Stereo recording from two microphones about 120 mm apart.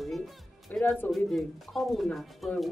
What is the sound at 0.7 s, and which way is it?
Speech, 15° left (ahead or behind).